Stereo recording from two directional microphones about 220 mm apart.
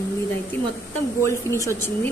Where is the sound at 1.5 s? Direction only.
10° left (ahead or behind).